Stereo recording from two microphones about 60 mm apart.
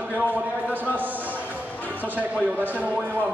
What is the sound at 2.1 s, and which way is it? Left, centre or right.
A man's voice, right.